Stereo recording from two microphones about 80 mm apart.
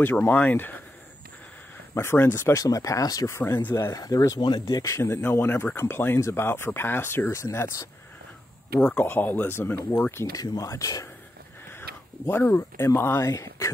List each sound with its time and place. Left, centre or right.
0.0 s speech: left
2.0 s speech: left
2.5 s speech: left
3.3 s speech: left
3.9 s speech: left
4.4 s speech: left
4.8 s speech: left
8.9 s speech: left
10.3 s speech: left
12.3 s speech: left
13.3 s speech: left